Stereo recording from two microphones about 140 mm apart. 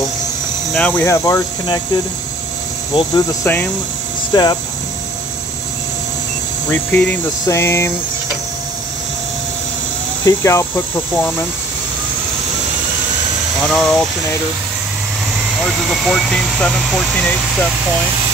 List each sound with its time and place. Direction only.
0.7 s speech: 10° left (ahead or behind)
2.9 s speech: 35° left (ahead or behind)
4.3 s speech: 30° left (ahead or behind)
6.7 s speech: 10° left (ahead or behind)
10.2 s speech: 20° left (ahead or behind)
13.7 s speech: 5° left (ahead or behind)
15.6 s speech: centre (ahead or behind)